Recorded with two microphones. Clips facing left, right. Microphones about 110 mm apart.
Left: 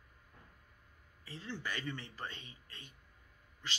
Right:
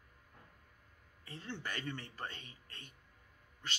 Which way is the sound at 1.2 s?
45° right (ahead or behind).